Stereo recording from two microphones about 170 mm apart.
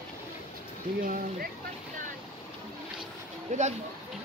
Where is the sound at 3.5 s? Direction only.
45° right (ahead or behind).